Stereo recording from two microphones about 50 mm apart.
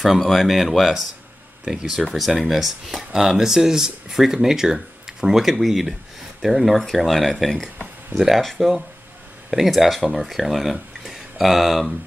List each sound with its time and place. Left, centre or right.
0.0 s speech: centre
2.1 s speech: centre